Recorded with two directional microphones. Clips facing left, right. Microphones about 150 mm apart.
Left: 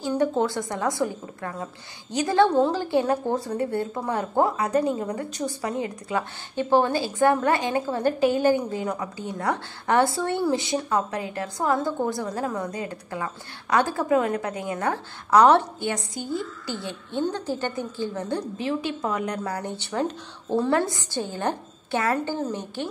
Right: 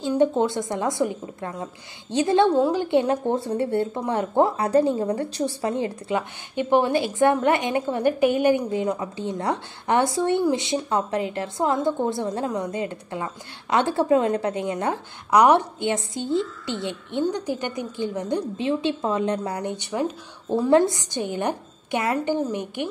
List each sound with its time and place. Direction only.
0.2 s a woman's voice: 20° right (ahead or behind)
15.9 s a woman's voice: 25° right (ahead or behind)